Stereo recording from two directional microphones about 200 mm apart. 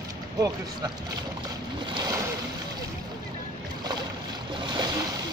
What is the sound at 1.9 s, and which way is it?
Boat, 20° right (ahead or behind).